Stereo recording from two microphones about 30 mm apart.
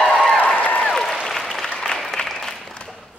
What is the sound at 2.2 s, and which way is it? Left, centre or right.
Applause, centre.